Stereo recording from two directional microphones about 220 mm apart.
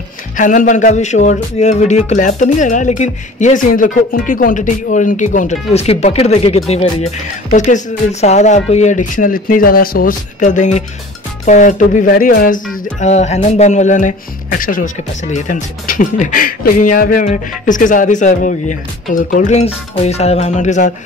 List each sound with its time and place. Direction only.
0.4 s speech: 35° left (ahead or behind)